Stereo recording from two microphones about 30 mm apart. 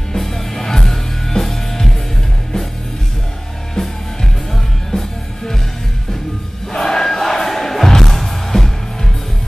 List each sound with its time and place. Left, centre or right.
0.1 s music: centre
4.2 s music: centre
6.7 s crowd: centre
7.2 s music: centre